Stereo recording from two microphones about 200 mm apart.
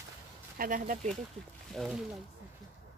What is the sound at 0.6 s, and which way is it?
Speech, 40° right (ahead or behind).